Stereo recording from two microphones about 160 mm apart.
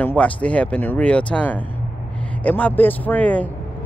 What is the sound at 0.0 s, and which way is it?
Speech, 10° left (ahead or behind).